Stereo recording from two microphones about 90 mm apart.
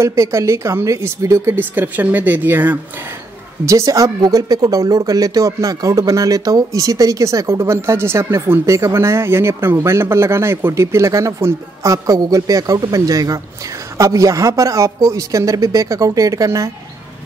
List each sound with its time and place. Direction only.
0.0 s speech: 30° right (ahead or behind)
3.6 s speech: 35° right (ahead or behind)